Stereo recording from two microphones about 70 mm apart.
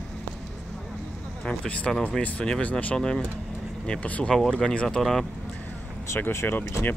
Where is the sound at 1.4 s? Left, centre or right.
Centre.